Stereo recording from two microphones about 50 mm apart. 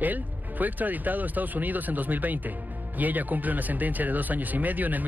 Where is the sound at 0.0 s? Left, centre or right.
Right.